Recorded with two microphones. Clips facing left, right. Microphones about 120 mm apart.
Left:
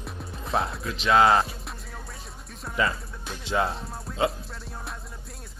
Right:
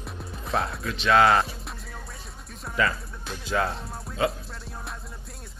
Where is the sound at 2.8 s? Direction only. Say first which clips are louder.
Right 1 dB; 20° left (ahead or behind).